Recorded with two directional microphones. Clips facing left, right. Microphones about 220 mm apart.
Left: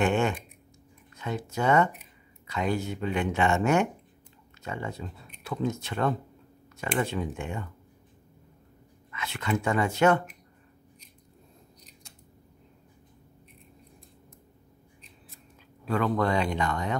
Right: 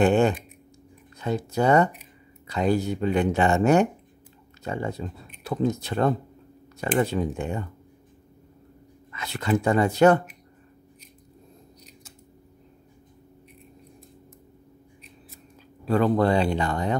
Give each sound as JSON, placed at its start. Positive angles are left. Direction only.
{"t": 0.0, "sound": "speech", "side_deg": -35}
{"t": 9.1, "sound": "speech", "side_deg": -35}
{"t": 15.8, "sound": "speech", "side_deg": -35}